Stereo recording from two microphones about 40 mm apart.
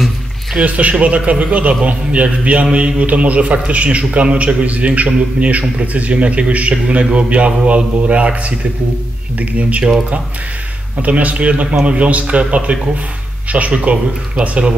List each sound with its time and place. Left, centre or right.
0.6 s a man's voice: right
11.0 s a man's voice: right